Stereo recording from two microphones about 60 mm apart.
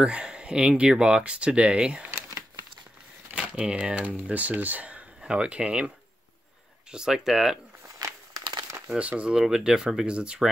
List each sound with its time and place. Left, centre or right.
0.0 s speech: centre
2.0 s a sound: right
3.5 s speech: centre
6.9 s speech: centre
8.7 s shuffling cards: centre
9.3 s speech: centre